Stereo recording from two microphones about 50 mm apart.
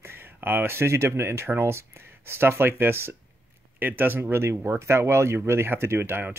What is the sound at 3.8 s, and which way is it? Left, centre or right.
Speech, right.